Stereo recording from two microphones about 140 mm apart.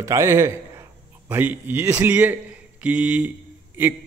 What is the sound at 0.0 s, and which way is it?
A man's voice, 20° right (ahead or behind).